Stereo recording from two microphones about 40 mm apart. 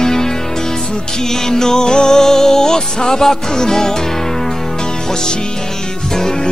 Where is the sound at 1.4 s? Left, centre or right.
Centre.